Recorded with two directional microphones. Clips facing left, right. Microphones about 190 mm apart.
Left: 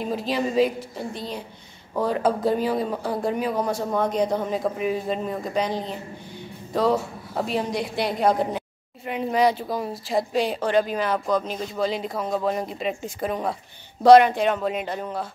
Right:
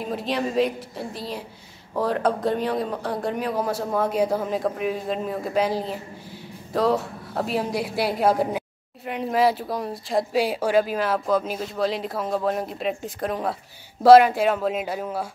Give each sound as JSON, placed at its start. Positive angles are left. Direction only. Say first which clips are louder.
{"t": 0.0, "sound": "a woman's voice", "louder": "left 1 dB", "side_deg": 0}